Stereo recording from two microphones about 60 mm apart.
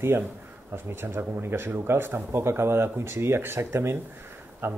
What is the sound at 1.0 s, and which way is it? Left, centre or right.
A man's voice, right.